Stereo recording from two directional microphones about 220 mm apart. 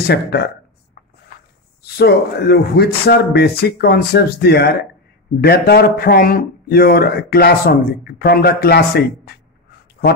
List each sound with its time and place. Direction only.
0.0 s speech: 45° left (ahead or behind)
1.8 s speech: 45° left (ahead or behind)